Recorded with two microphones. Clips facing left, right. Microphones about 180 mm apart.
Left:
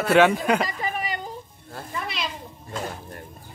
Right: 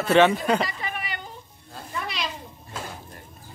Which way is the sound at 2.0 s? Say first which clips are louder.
Even; centre (ahead or behind).